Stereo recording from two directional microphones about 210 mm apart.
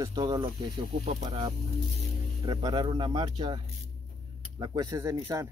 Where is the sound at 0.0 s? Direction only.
20° right (ahead or behind).